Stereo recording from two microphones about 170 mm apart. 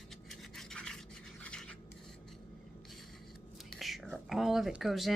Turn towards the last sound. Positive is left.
turn(degrees=0)  # may be behind; listen again after turning